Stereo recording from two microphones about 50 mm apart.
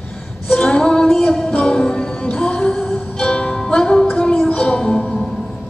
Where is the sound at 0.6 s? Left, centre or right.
Centre.